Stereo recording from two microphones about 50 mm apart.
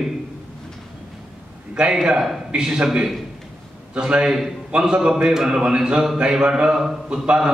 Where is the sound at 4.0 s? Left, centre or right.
Right.